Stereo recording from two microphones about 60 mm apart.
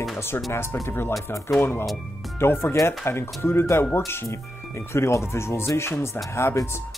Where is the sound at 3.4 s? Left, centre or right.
Left.